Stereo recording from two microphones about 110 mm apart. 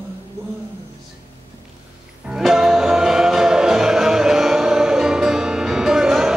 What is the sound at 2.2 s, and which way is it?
Music, 5° right (ahead or behind).